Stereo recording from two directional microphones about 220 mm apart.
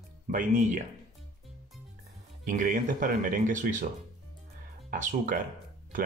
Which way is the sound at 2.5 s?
35° right (ahead or behind).